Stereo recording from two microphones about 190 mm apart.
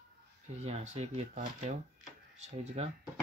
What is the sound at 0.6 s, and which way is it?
Speech, 35° right (ahead or behind).